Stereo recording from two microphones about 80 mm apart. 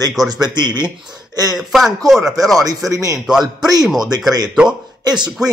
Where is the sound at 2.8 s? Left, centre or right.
Right.